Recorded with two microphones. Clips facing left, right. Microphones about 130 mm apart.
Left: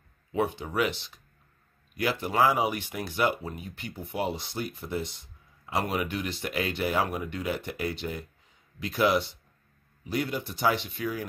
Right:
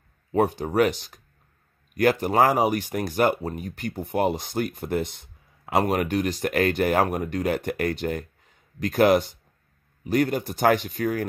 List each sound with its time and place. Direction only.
0.3 s speech: 45° right (ahead or behind)